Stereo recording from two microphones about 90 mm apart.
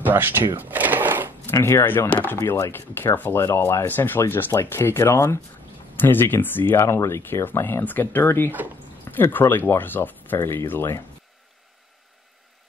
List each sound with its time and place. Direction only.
0.0 s cash register: 20° right (ahead or behind)
1.4 s speech: 25° left (ahead or behind)
8.5 s speech: 20° right (ahead or behind)
9.1 s speech: 25° left (ahead or behind)